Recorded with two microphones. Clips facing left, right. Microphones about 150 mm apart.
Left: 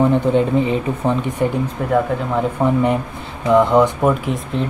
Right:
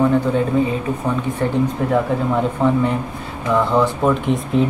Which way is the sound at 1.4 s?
15° left (ahead or behind).